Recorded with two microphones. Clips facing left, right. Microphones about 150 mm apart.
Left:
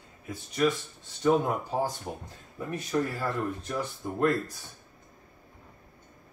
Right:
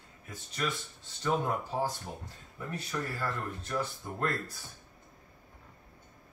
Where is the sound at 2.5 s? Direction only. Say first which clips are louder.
Left 8 dB; 20° left (ahead or behind).